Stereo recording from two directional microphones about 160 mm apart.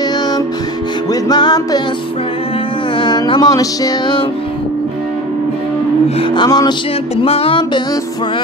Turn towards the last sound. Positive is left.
turn(degrees=35)  # may be behind; listen again after turning